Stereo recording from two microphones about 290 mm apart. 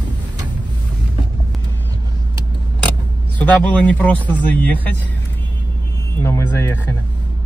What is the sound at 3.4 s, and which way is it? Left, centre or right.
Speech, centre.